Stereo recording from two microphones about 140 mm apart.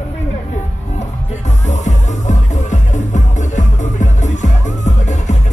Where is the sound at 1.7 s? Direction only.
60° left (ahead or behind).